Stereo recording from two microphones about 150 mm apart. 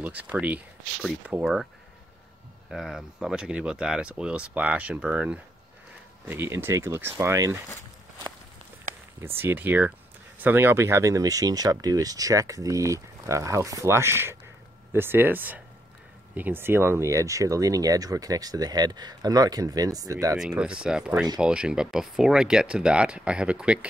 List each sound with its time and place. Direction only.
0.0 s speech: 10° right (ahead or behind)
2.7 s speech: centre (ahead or behind); by 7.6 s 20° right (ahead or behind)
9.2 s speech: 15° right (ahead or behind)
20.3 s speech: 5° right (ahead or behind)